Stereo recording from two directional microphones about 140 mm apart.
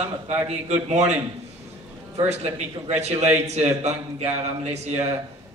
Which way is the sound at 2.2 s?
50° right (ahead or behind).